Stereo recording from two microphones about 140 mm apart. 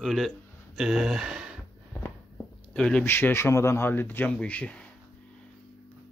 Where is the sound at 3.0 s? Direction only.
15° left (ahead or behind).